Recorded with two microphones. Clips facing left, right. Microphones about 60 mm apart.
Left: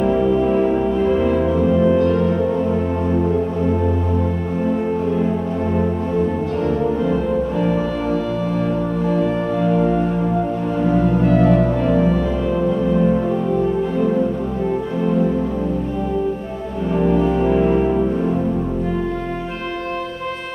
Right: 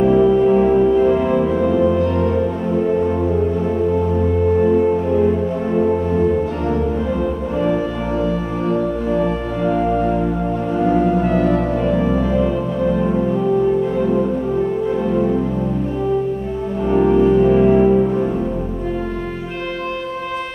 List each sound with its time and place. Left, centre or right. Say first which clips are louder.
1.3 s music: right 1 dB; centre